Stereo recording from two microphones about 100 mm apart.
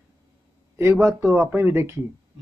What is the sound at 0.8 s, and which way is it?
Speech, 25° right (ahead or behind).